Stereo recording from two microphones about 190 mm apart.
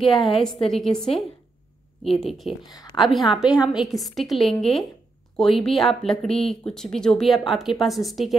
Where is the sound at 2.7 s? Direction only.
20° left (ahead or behind).